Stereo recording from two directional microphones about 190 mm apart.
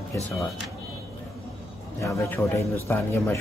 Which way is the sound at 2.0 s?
15° left (ahead or behind).